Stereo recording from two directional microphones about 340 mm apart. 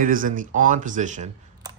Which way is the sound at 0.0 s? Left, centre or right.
Right.